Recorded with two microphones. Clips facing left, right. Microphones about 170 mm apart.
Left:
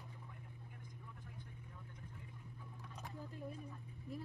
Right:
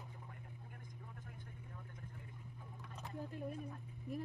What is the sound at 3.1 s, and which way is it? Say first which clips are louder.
Speech: right 5 dB; 65° right (ahead or behind).